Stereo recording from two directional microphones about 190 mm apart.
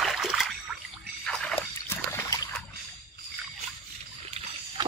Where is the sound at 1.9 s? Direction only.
10° left (ahead or behind).